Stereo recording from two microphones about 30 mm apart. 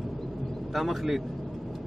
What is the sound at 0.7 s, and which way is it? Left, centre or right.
Speech, centre.